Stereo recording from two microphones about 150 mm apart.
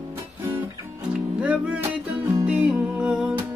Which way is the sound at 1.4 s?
10° right (ahead or behind).